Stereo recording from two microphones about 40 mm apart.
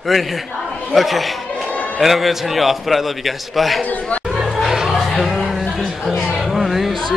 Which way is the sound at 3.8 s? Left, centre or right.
Left.